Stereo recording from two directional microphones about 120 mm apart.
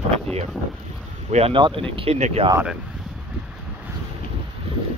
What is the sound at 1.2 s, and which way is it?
Speech, 65° right (ahead or behind).